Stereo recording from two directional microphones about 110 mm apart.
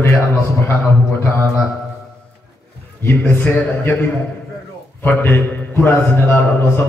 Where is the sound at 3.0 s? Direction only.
20° left (ahead or behind).